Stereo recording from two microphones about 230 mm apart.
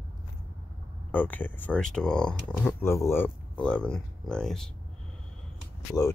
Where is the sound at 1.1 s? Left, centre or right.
Centre.